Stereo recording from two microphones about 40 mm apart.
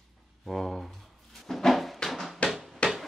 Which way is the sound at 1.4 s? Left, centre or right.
Centre.